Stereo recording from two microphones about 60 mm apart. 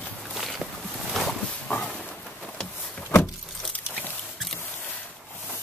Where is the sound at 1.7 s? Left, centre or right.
Left.